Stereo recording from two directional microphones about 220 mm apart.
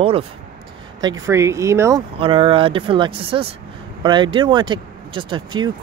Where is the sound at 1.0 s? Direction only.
15° right (ahead or behind).